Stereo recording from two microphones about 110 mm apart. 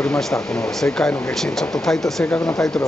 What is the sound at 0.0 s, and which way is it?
Speech, 5° left (ahead or behind).